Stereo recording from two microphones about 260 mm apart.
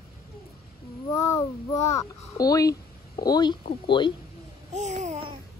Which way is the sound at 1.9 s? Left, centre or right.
Centre.